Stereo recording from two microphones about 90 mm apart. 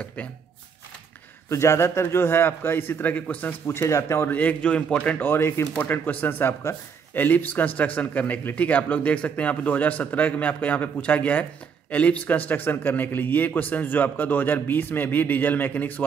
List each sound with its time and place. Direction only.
0.0 s speech: 15° left (ahead or behind)
1.5 s a man's voice: 30° left (ahead or behind)
3.8 s speech: 30° left (ahead or behind); by 5.1 s 15° left (ahead or behind)
5.2 s a man's voice: 25° left (ahead or behind)